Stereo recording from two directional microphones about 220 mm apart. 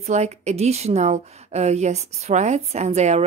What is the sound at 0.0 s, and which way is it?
A woman's voice, 30° right (ahead or behind).